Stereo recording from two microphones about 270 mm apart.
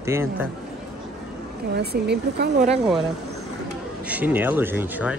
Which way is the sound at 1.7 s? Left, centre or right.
Right.